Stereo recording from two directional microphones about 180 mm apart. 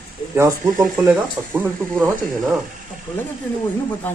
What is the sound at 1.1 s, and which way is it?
Speech, 10° right (ahead or behind).